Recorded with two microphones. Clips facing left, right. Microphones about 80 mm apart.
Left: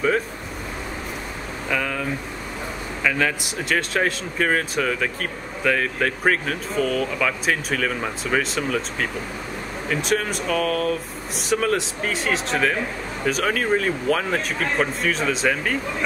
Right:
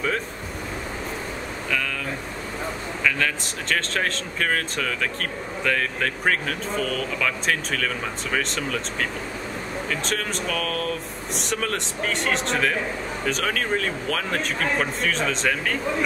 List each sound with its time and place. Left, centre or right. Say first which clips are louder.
1.7 s speech: left 4 dB; centre